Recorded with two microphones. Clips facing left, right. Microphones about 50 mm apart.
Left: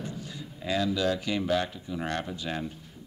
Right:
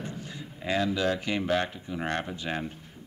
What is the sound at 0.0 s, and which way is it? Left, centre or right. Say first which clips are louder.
Speech: even; right.